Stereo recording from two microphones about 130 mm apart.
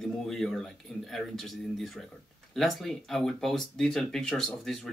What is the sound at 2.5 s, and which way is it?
Speech, centre (ahead or behind).